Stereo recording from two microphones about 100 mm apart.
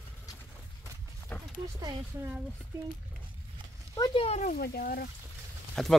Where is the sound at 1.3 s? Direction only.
15° left (ahead or behind).